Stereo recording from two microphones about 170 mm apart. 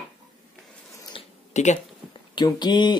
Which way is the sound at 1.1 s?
45° left (ahead or behind).